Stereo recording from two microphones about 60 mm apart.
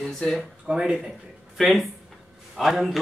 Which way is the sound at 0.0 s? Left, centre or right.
Centre.